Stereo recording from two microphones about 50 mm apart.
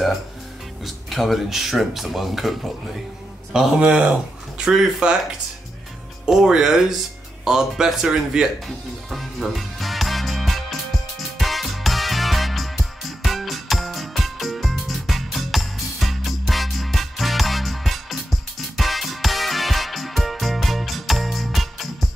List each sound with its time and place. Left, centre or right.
0.8 s speech: centre
3.5 s speech: centre
6.2 s speech: centre
8.6 s music: centre